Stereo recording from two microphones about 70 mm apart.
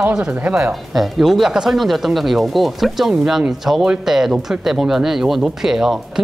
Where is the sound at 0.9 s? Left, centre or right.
Centre.